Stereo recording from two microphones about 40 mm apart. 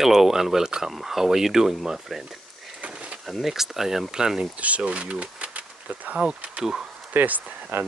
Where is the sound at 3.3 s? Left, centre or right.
Centre.